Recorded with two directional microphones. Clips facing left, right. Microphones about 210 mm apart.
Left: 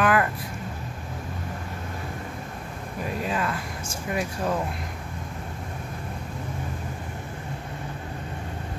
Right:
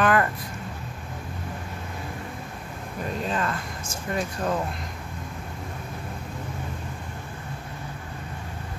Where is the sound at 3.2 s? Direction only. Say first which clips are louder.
Even; 10° left (ahead or behind).